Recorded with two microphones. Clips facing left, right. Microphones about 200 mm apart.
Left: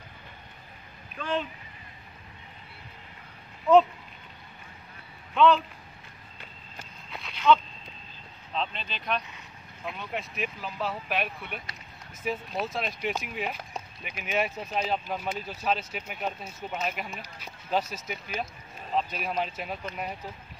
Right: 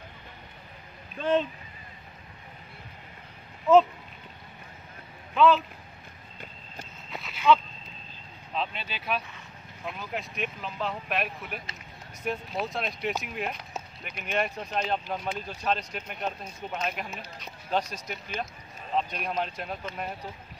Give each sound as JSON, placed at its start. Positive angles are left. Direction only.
{"t": 1.1, "sound": "speech", "side_deg": -25}
{"t": 3.7, "sound": "speech", "side_deg": 0}
{"t": 5.3, "sound": "speech", "side_deg": -5}
{"t": 7.1, "sound": "a sound", "side_deg": 0}
{"t": 8.5, "sound": "speech", "side_deg": -5}